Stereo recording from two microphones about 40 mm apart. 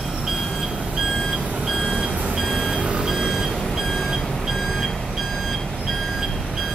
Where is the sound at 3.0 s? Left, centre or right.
Centre.